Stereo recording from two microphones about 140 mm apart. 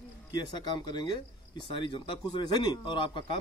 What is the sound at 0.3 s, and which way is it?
A man's voice, 30° left (ahead or behind).